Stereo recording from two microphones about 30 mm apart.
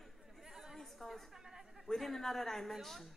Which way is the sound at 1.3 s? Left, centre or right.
Centre.